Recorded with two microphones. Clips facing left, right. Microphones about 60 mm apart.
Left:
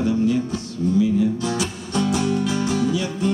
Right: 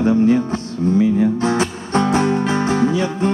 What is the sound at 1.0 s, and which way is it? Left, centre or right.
Speech, right.